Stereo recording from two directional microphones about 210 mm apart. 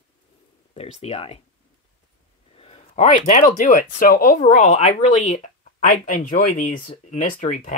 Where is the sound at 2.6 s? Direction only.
30° left (ahead or behind).